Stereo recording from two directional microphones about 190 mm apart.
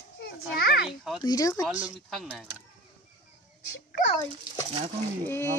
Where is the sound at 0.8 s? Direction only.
Centre (ahead or behind).